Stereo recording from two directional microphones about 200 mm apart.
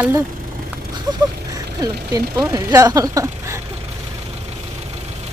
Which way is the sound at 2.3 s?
15° right (ahead or behind).